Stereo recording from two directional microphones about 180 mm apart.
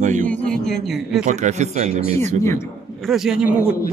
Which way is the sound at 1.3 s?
40° right (ahead or behind).